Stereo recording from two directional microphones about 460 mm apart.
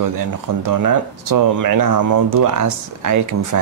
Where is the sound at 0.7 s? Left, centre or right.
Right.